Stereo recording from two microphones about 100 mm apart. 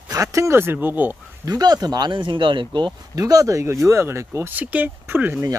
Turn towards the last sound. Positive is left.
turn(degrees=-20)  # may be behind; listen again after turning